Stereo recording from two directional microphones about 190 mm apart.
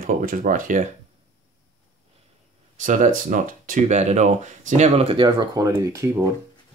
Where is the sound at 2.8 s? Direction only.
40° right (ahead or behind); by 6.3 s 15° right (ahead or behind).